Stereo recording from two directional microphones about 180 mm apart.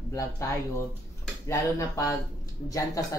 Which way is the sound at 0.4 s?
15° left (ahead or behind).